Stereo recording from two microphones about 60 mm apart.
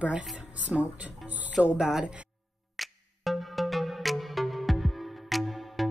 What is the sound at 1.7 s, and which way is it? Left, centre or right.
Speech, centre.